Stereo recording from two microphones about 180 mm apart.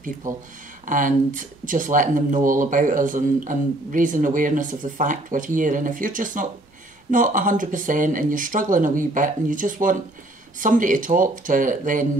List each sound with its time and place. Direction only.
0.2 s speech: 45° right (ahead or behind)